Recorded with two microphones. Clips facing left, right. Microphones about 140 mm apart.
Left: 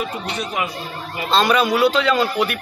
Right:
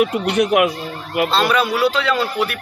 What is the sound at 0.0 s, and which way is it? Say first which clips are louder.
Speech: right 9 dB; 65° right (ahead or behind).